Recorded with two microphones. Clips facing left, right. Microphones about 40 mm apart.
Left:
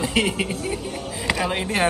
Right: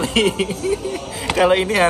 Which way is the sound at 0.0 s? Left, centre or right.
Right.